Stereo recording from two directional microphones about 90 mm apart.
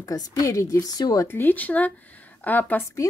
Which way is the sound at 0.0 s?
40° left (ahead or behind).